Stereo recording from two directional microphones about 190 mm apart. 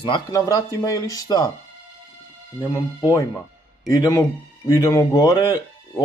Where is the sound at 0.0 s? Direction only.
20° left (ahead or behind).